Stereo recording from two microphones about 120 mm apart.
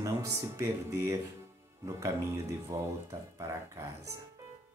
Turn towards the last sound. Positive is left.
turn(degrees=-25)  # may be behind; listen again after turning